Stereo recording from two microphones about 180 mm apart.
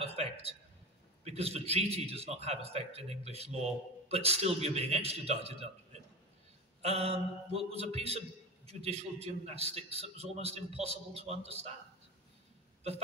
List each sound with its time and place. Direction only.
0.0 s a sound: 35° right (ahead or behind)
1.2 s a man's voice: 35° right (ahead or behind)
6.8 s a man's voice: 35° right (ahead or behind)